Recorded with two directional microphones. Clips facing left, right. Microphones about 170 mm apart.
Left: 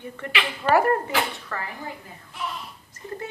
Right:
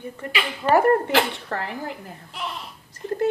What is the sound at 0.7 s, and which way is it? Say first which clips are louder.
Speech: right 4 dB; 50° right (ahead or behind).